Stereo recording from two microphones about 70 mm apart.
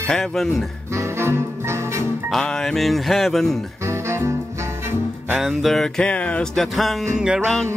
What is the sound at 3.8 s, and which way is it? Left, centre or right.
Music, right.